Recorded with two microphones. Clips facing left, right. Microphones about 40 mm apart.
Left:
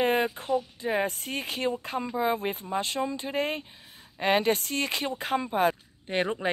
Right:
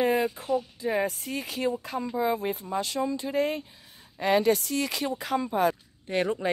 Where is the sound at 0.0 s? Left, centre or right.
Left.